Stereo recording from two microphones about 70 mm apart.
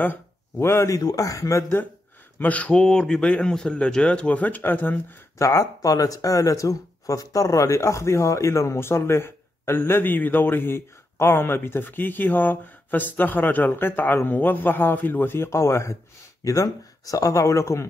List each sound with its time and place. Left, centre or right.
0.6 s speech: left
0.8 s a man's voice: left
2.3 s a man's voice: left
5.4 s speech: left
16.4 s speech: left